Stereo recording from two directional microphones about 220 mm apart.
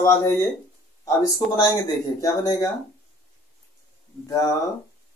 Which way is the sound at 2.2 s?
15° left (ahead or behind).